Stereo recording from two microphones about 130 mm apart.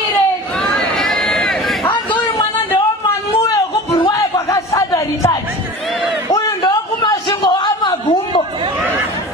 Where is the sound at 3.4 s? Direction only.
25° left (ahead or behind).